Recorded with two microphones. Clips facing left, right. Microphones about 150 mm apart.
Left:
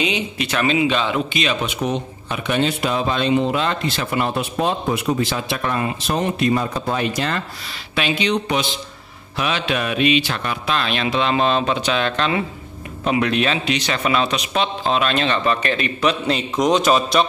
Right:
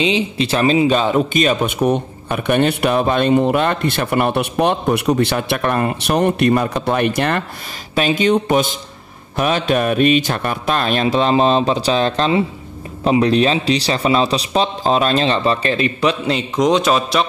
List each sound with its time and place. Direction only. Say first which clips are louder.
0.0 s speech: right 5 dB; 30° right (ahead or behind); by 7.4 s 60° right (ahead or behind)
7.9 s mantra: right 5 dB; 45° right (ahead or behind)
13.0 s a man's voice: right 5 dB; 30° right (ahead or behind)
16.5 s a man's voice: right 2 dB; centre (ahead or behind)